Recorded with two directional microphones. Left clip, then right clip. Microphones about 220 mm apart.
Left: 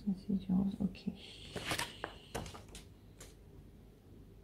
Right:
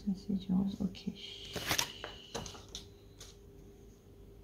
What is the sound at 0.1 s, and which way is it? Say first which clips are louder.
Speech: right 1 dB; 5° left (ahead or behind).